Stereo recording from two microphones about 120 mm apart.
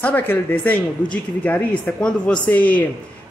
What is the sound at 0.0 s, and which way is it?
Speech, 15° left (ahead or behind).